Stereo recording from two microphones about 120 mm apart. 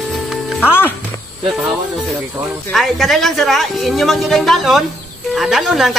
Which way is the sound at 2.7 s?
Centre (ahead or behind).